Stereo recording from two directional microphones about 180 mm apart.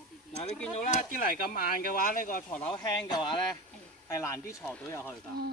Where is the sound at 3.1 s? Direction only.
25° left (ahead or behind).